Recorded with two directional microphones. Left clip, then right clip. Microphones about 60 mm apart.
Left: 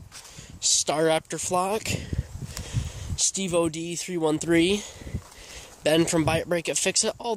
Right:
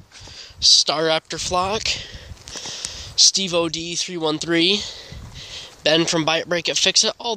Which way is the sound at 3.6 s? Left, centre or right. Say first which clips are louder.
Right 3 dB; centre.